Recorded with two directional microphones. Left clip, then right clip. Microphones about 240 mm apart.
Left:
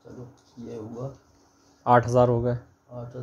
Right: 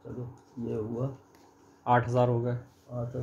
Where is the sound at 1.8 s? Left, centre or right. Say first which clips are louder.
Left 6 dB; left.